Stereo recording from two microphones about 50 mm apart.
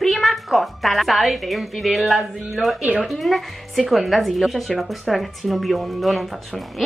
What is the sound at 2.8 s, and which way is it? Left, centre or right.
Speech, right.